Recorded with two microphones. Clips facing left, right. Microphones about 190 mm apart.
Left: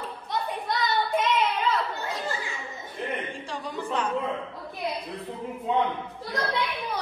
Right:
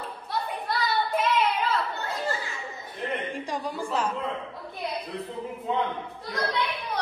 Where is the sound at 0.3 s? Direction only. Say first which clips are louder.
Left 1 dB; 5° right (ahead or behind).